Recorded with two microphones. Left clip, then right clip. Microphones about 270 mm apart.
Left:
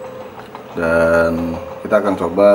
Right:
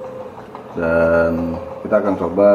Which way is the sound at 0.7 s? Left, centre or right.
Centre.